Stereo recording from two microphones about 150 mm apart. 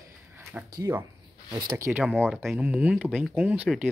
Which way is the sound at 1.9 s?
10° right (ahead or behind).